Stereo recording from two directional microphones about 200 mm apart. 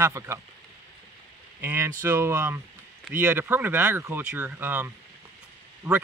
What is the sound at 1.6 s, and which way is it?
Speech, 15° right (ahead or behind).